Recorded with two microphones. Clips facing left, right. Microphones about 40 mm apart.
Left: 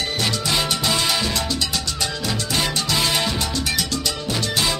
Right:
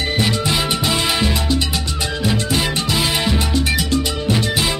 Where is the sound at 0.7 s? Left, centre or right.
Centre.